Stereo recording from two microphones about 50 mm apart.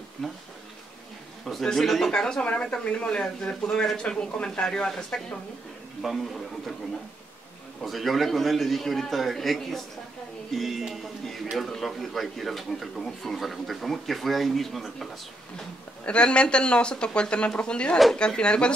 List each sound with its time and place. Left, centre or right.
1.4 s a man's voice: centre
2.1 s a man's voice: centre
7.8 s a man's voice: centre
10.5 s a sound: centre
11.5 s a man's voice: centre
16.1 s a man's voice: left